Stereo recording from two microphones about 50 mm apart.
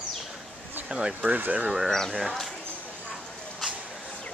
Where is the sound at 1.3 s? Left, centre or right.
Right.